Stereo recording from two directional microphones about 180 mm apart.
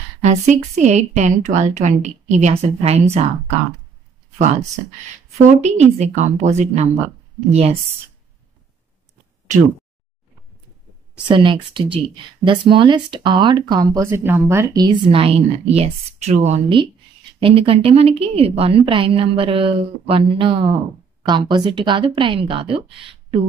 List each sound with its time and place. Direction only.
0.2 s a woman's voice: 40° right (ahead or behind)
5.6 s a woman's voice: 40° right (ahead or behind)
11.2 s a woman's voice: 25° right (ahead or behind)